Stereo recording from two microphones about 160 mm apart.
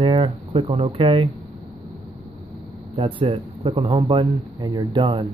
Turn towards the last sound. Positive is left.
turn(degrees=-30)  # may be behind; listen again after turning